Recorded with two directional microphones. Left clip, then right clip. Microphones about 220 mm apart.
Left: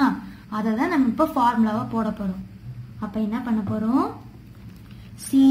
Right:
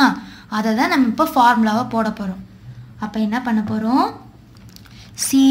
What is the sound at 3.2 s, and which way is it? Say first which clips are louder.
Speech: right 6 dB; 40° right (ahead or behind).